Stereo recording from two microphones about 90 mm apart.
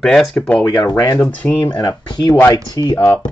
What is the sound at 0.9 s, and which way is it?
Speech, 40° left (ahead or behind).